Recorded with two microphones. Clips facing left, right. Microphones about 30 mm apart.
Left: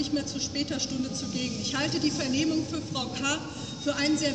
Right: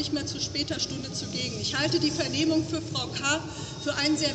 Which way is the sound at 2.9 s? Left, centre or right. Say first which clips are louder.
Right 1 dB; right.